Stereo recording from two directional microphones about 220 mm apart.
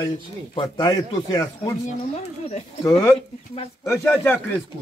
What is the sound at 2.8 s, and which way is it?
Speech, 10° left (ahead or behind).